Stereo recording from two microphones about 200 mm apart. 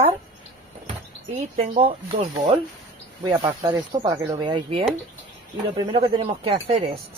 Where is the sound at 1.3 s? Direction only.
30° right (ahead or behind).